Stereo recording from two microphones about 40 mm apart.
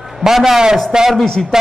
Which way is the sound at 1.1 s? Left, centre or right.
Centre.